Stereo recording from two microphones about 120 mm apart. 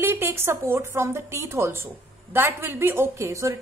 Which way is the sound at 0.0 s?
20° right (ahead or behind).